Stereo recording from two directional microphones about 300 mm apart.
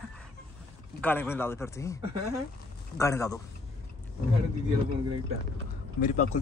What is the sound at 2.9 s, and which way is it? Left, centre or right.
Speech, centre.